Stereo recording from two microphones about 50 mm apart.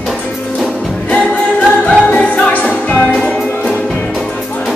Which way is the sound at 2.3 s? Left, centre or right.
Left.